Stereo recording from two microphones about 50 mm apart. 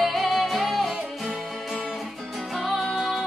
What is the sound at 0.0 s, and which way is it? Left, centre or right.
Music, centre.